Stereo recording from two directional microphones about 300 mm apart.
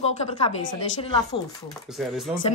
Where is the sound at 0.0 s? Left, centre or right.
Centre.